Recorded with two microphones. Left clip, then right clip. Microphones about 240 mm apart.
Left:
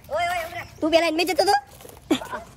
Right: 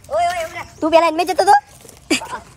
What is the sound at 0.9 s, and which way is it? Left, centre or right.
Speech, centre.